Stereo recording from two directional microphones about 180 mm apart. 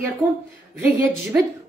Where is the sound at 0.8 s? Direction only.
10° right (ahead or behind).